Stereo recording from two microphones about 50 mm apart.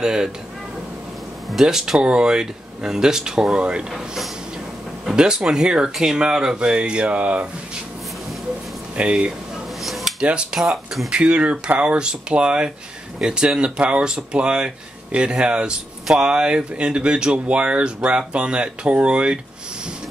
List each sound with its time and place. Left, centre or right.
0.0 s speech: centre
1.5 s speech: centre
3.9 s speech: centre
5.0 s speech: centre
8.9 s speech: right
9.8 s dishes: centre
10.2 s speech: right
10.6 s speech: centre
11.1 s speech: centre